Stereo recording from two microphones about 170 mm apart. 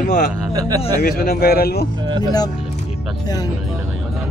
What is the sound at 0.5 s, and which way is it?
Speech, 20° right (ahead or behind).